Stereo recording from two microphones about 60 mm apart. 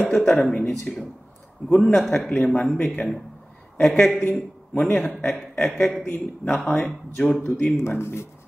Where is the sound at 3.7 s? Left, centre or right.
Centre.